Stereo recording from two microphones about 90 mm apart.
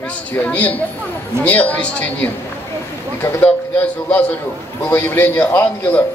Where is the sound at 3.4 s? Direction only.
15° left (ahead or behind).